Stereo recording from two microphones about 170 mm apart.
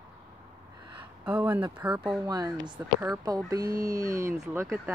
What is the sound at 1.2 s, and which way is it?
Speech, 10° right (ahead or behind).